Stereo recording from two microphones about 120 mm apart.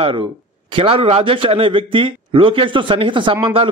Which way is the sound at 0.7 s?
50° right (ahead or behind).